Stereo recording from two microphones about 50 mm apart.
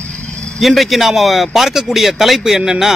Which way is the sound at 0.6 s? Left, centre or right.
Centre.